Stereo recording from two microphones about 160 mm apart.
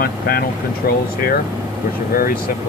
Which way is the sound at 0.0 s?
70° left (ahead or behind).